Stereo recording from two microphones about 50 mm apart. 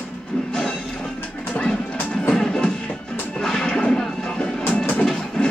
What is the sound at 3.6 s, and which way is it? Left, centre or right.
Artillery fire, centre.